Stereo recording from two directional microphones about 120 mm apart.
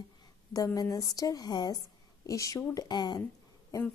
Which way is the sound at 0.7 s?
30° left (ahead or behind).